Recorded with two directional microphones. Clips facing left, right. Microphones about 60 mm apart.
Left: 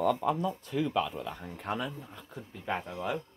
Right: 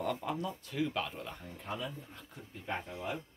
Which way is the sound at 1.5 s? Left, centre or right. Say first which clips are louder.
Left 5 dB; left.